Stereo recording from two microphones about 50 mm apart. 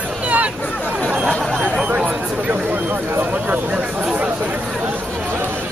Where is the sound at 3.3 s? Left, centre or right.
Right.